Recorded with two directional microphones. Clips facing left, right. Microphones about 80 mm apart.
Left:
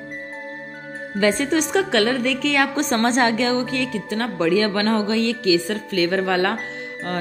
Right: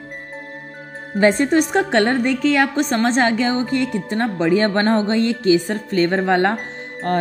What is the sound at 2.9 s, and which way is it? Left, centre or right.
Speech, centre.